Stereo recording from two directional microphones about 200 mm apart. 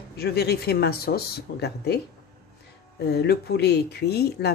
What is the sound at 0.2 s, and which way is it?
Speech, 55° left (ahead or behind).